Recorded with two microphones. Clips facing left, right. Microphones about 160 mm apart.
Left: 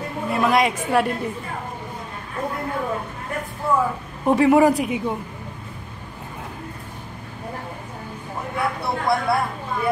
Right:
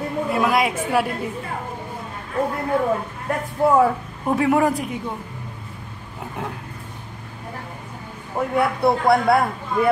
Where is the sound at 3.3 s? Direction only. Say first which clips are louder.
Right 5 dB; 75° right (ahead or behind).